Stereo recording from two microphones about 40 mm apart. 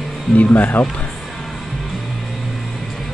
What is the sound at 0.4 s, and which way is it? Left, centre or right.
Speech, left.